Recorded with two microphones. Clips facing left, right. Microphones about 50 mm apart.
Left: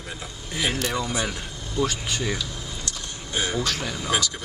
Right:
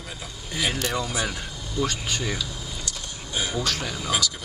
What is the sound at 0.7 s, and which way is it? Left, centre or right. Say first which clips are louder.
Speech: left 1 dB; centre.